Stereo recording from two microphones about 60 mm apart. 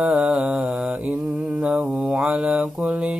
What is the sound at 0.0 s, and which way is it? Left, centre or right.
Mantra, right.